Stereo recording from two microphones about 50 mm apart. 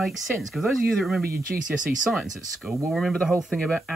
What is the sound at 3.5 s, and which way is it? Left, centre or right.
Speech, centre.